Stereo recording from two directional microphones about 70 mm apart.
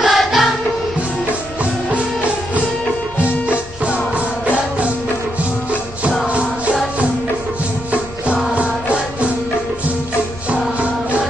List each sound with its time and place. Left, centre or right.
0.0 s music: centre
1.6 s music: centre
3.2 s music: centre
6.2 s music: centre
8.5 s music: centre
10.8 s music: centre